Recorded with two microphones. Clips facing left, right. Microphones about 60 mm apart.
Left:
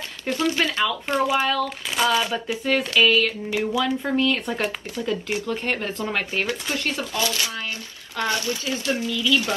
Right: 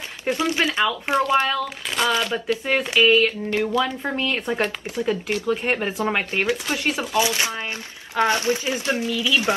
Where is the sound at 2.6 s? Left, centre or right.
Centre.